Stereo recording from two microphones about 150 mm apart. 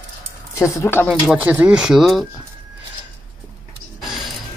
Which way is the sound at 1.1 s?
5° right (ahead or behind).